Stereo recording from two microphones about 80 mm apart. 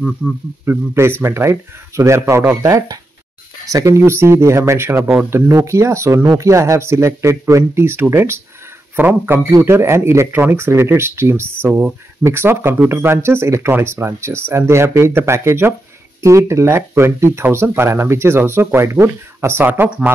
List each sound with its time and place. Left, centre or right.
0.7 s a man's voice: right